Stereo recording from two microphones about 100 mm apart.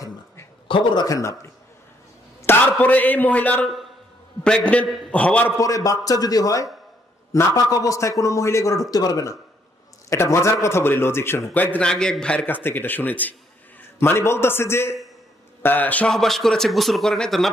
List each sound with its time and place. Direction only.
0.7 s speech: 55° left (ahead or behind)
1.0 s a man's voice: 30° left (ahead or behind)
2.4 s a man's voice: 15° left (ahead or behind)
5.6 s a man's voice: 35° left (ahead or behind); by 16.1 s 15° left (ahead or behind)
16.1 s speech: centre (ahead or behind)